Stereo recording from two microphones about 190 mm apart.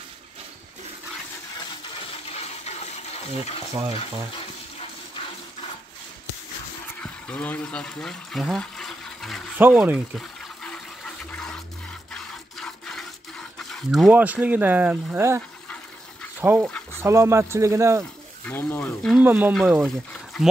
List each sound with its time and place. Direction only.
2.2 s water: 35° left (ahead or behind)
7.0 s speech: 5° left (ahead or behind)
9.6 s water: 10° right (ahead or behind)
12.1 s fill: 5° left (ahead or behind)
13.6 s speech: centre (ahead or behind); by 18.0 s 15° right (ahead or behind)
18.4 s speech: 10° left (ahead or behind)
19.2 s speech: 10° right (ahead or behind)